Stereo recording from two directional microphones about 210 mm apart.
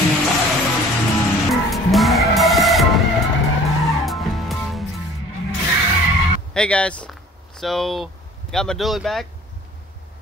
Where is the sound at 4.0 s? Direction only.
Centre (ahead or behind).